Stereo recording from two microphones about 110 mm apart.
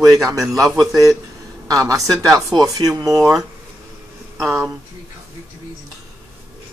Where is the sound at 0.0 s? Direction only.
30° right (ahead or behind).